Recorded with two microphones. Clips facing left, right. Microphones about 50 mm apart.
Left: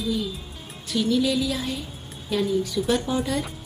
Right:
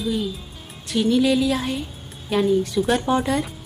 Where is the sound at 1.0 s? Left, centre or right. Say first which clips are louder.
Right 4 dB; right.